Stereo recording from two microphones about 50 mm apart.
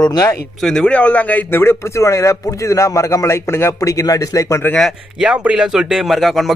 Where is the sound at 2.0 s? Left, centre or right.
Left.